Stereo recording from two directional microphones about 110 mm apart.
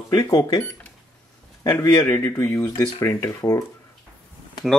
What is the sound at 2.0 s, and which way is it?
A man's voice, 20° left (ahead or behind).